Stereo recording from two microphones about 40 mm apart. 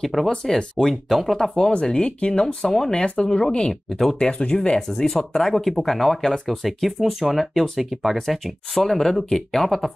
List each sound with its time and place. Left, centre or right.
0.0 s speech: centre
0.5 s speech: centre
0.8 s speech: centre
1.5 s speech: left; by 7.9 s centre
7.9 s speech: centre
8.7 s speech: centre